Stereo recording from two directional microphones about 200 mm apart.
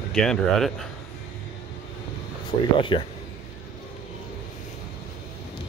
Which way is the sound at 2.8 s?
25° left (ahead or behind).